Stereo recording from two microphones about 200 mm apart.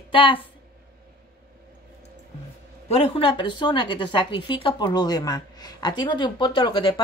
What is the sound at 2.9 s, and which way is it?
A woman's voice, 30° left (ahead or behind).